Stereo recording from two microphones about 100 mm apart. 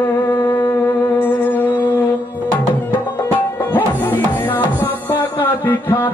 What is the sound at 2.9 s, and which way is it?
Tabla, 20° left (ahead or behind).